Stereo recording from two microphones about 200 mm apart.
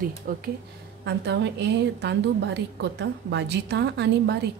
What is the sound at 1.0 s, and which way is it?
A woman's voice, 60° right (ahead or behind).